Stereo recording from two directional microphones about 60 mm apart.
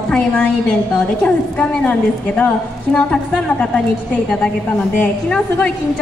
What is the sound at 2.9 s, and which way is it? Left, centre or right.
Speech, centre.